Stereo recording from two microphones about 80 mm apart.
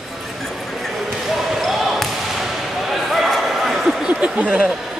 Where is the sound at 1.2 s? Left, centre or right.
Centre.